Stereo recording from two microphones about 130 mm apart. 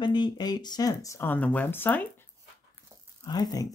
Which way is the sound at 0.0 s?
35° left (ahead or behind).